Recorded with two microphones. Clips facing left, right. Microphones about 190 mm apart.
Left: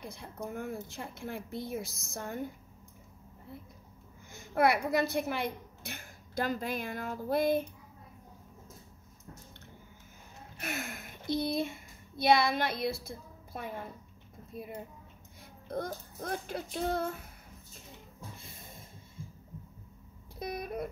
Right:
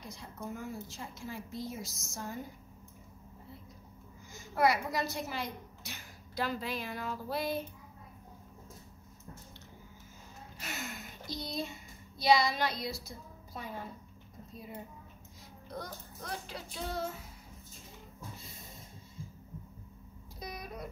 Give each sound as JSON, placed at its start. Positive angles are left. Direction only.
{"t": 0.0, "sound": "speech", "side_deg": 55}
{"t": 4.3, "sound": "a woman's voice", "side_deg": 55}
{"t": 10.6, "sound": "speech", "side_deg": 55}
{"t": 15.7, "sound": "a woman's voice", "side_deg": 50}
{"t": 20.3, "sound": "speech", "side_deg": 55}